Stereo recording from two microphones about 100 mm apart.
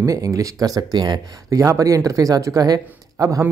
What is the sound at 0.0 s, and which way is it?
Speech, 35° right (ahead or behind).